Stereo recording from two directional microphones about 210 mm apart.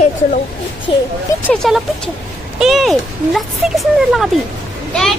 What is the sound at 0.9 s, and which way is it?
Speech, 25° left (ahead or behind).